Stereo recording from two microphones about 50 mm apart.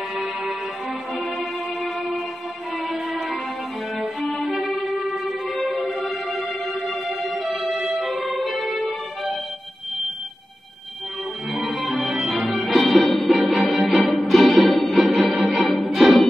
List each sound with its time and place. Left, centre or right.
2.9 s music: centre
11.5 s music: centre